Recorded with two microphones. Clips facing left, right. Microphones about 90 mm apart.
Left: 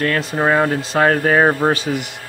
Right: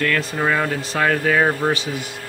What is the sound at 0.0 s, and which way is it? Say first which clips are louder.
Speech: left 3 dB; 30° left (ahead or behind).